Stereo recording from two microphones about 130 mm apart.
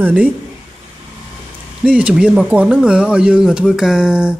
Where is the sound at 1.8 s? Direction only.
10° right (ahead or behind).